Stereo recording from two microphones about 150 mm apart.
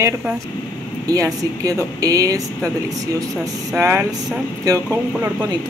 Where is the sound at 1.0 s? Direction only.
25° right (ahead or behind).